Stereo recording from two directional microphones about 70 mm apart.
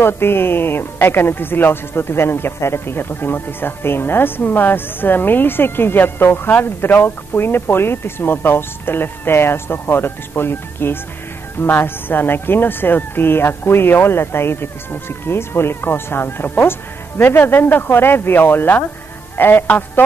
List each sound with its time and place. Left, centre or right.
0.0 s speech: left